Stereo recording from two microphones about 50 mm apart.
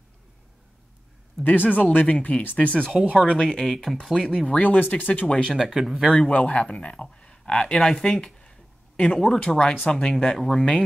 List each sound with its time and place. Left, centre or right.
1.4 s speech: centre
1.7 s speech: left; by 4.5 s centre
4.5 s speech: left
5.3 s speech: centre
5.6 s speech: centre
6.1 s speech: centre
7.8 s a sound: centre
9.2 s speech: centre